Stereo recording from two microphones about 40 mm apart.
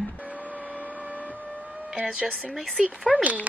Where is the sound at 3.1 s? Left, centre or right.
Right.